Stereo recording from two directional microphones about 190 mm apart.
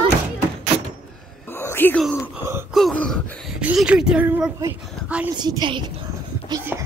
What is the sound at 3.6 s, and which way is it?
A woman's voice, 5° right (ahead or behind).